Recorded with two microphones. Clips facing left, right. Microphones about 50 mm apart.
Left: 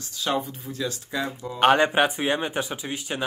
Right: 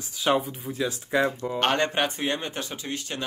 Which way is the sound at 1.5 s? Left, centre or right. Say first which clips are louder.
Left 8 dB; centre.